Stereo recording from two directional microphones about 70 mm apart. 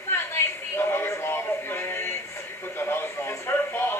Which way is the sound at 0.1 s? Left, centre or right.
Left.